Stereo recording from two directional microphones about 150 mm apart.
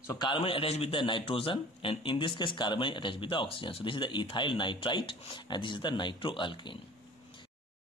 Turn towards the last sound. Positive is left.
turn(degrees=30)  # may be behind; listen again after turning